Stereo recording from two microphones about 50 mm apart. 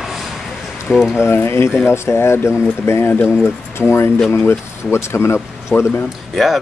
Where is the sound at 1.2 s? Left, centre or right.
Left.